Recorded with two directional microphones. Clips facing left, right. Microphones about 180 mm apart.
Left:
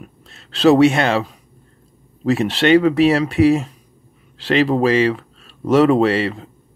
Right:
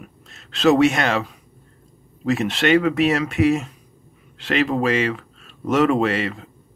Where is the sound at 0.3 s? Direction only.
35° left (ahead or behind).